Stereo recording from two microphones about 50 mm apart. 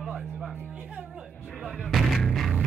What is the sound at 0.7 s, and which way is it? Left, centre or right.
Speech, right.